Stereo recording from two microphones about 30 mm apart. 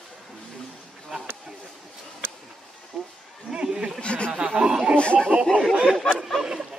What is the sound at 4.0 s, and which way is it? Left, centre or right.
Speech, left.